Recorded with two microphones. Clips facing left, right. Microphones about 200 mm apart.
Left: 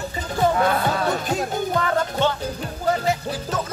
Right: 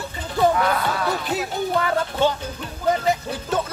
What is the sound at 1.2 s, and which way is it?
Music, 45° left (ahead or behind).